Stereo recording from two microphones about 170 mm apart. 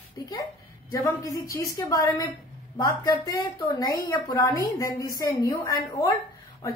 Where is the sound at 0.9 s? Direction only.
20° left (ahead or behind).